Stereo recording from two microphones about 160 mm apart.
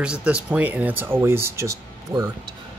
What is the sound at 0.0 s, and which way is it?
Speech, 5° right (ahead or behind).